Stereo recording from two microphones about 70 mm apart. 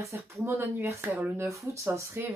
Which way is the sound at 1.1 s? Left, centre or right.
Right.